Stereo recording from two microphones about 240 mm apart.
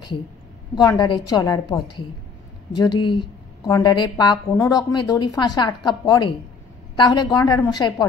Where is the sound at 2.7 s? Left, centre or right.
Centre.